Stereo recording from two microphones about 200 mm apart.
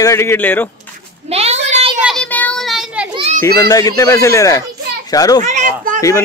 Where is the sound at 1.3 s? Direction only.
30° right (ahead or behind).